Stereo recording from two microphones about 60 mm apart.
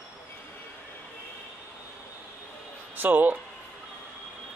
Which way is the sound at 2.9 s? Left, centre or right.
Right.